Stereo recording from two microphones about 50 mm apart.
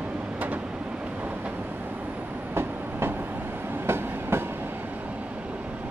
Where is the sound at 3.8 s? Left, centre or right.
Right.